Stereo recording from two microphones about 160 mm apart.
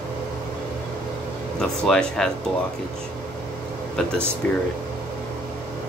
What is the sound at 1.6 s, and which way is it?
Speech, 5° left (ahead or behind).